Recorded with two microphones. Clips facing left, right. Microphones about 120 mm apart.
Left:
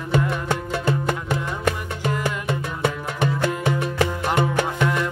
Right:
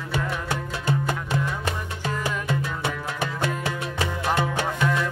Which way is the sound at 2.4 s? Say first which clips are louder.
Left 3 dB; 55° left (ahead or behind).